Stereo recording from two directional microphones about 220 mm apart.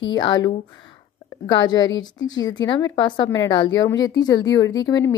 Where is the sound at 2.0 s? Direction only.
15° left (ahead or behind).